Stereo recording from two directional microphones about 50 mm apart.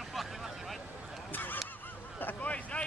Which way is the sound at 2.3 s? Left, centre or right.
Left.